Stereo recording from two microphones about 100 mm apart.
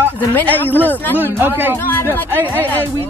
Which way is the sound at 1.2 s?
20° right (ahead or behind).